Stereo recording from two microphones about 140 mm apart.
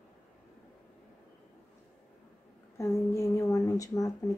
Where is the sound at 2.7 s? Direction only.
20° left (ahead or behind).